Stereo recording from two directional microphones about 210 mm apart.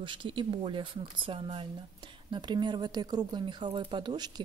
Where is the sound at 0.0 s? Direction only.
25° right (ahead or behind).